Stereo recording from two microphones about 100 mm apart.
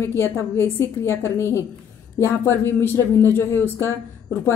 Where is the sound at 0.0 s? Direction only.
25° left (ahead or behind).